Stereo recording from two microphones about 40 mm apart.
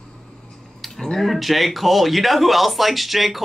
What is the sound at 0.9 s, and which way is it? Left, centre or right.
Speech, centre.